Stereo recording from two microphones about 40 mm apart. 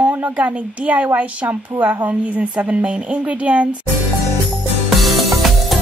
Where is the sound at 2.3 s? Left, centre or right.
Right.